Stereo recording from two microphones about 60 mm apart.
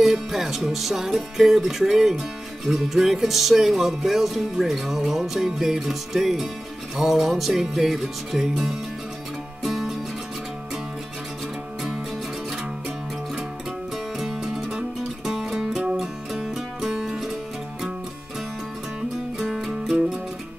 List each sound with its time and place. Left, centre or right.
0.0 s music: centre
14.1 s music: centre
15.8 s music: centre
19.3 s music: centre